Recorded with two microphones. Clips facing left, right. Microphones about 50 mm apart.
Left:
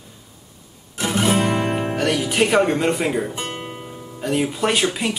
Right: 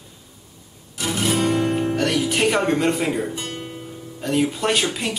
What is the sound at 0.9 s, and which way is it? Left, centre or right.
Music, left.